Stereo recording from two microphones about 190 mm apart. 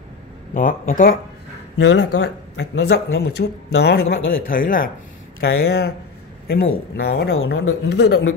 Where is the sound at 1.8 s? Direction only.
70° left (ahead or behind).